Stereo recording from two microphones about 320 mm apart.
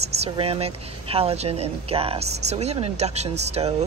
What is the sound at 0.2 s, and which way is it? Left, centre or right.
A woman's voice, centre.